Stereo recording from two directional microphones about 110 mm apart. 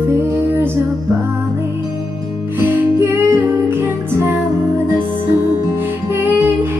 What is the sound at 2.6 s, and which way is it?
Music, 15° right (ahead or behind).